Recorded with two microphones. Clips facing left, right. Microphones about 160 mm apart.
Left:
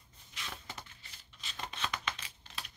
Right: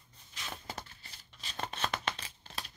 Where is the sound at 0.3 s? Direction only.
35° right (ahead or behind).